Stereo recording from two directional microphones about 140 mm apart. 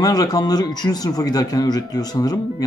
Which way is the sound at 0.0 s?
25° left (ahead or behind).